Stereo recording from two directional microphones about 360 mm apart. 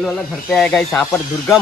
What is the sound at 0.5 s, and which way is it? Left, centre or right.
Speech, centre.